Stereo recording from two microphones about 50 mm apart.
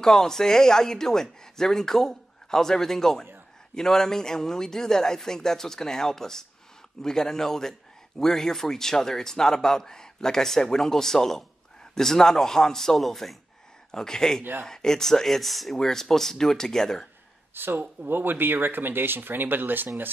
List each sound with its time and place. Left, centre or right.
0.0 s speech: centre
14.4 s speech: right
14.7 s speech: centre
17.6 s speech: right